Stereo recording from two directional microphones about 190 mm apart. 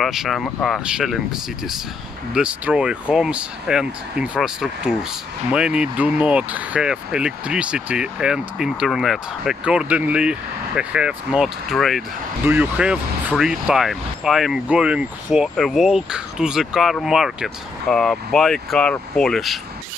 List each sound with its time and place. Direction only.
0.0 s speech: centre (ahead or behind)